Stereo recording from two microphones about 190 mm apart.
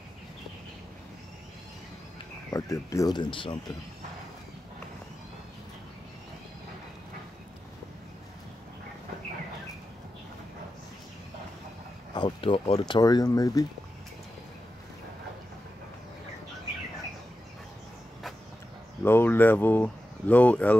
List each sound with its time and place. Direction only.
2.5 s speech: 15° left (ahead or behind)
12.1 s speech: 25° left (ahead or behind)
19.0 s speech: 10° left (ahead or behind)